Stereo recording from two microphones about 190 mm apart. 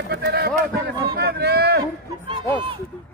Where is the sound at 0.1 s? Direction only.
60° right (ahead or behind).